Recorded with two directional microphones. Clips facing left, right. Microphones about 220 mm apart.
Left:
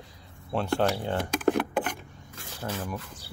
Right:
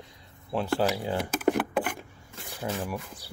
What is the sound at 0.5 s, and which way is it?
Speech, 5° right (ahead or behind).